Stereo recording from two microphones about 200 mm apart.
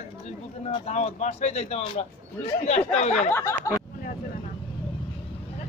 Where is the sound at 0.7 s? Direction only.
35° left (ahead or behind).